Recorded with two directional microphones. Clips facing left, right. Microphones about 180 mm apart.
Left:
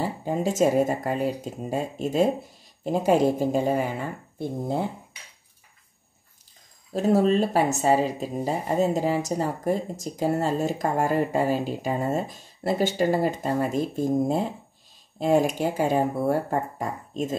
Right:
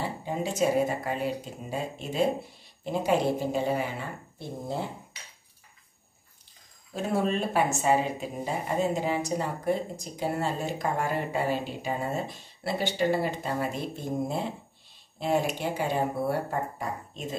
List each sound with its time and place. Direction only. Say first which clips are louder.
0.0 s speech: left 5 dB; 40° left (ahead or behind)
6.9 s speech: left 7 dB; 40° left (ahead or behind)